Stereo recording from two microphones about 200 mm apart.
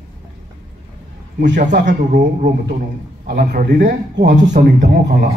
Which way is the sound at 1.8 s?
40° right (ahead or behind).